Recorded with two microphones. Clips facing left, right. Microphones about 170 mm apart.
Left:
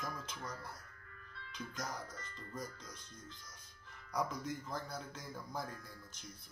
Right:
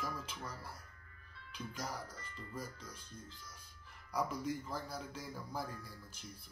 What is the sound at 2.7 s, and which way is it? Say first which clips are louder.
Speech: right 1 dB; 30° right (ahead or behind).